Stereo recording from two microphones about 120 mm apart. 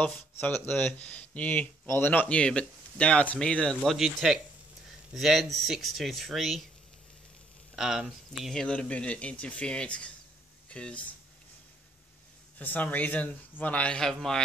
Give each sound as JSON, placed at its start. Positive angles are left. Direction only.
{"t": 0.7, "sound": "speech", "side_deg": 10}
{"t": 7.7, "sound": "speech", "side_deg": -5}
{"t": 12.5, "sound": "speech", "side_deg": 15}